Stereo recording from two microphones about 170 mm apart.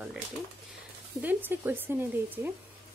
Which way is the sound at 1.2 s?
10° right (ahead or behind).